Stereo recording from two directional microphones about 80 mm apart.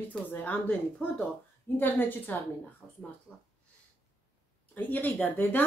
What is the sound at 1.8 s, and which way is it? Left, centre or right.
Speech, left.